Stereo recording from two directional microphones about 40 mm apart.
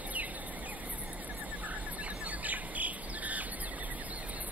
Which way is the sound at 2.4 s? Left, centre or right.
Right.